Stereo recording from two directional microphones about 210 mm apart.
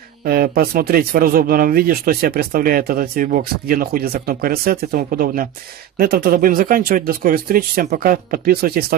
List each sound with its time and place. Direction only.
0.2 s speech: 45° right (ahead or behind)